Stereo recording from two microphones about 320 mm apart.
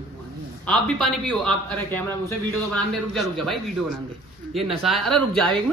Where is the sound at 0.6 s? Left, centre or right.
Centre.